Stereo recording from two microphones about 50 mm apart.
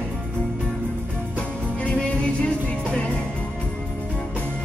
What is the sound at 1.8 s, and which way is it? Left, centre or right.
Music, left.